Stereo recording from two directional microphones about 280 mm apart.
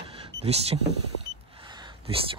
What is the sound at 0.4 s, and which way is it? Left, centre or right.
Speech, right.